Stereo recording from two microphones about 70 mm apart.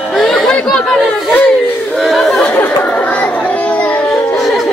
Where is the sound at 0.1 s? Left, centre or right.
Centre.